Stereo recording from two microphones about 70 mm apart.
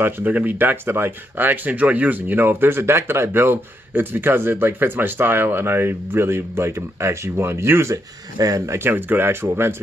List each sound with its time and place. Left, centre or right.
0.0 s speech: right
8.4 s speech: right
8.7 s speech: right